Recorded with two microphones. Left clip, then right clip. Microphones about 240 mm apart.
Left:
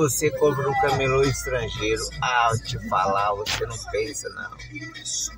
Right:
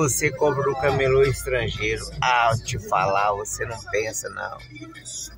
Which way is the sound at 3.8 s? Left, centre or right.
Right.